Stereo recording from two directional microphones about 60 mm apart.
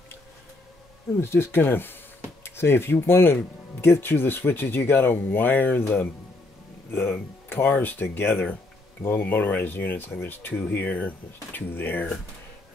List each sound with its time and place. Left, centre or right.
1.2 s speech: left
6.9 s speech: left